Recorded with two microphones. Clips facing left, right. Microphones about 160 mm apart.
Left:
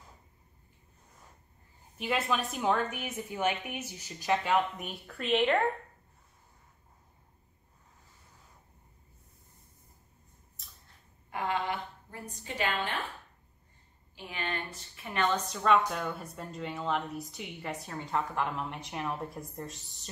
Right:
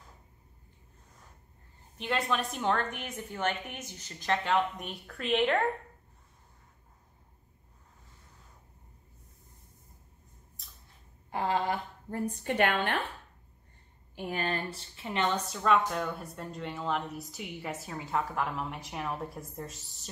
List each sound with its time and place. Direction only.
2.0 s a woman's voice: 5° left (ahead or behind)
10.6 s a sound: centre (ahead or behind)
11.2 s a sound: 35° right (ahead or behind)
12.4 s a woman's voice: 60° right (ahead or behind)
14.1 s a woman's voice: 45° right (ahead or behind); by 15.3 s 20° right (ahead or behind)
15.4 s a woman's voice: centre (ahead or behind)